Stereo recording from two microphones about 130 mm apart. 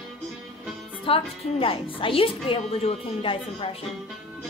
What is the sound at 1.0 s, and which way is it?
A woman's voice, 45° left (ahead or behind).